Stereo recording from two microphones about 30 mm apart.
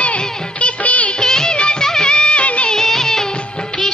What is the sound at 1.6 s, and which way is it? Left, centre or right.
Music, left.